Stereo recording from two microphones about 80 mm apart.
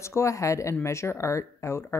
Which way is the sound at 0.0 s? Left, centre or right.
Left.